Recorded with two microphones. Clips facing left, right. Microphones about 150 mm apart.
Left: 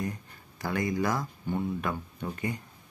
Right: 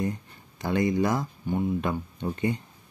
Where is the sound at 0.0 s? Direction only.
25° right (ahead or behind).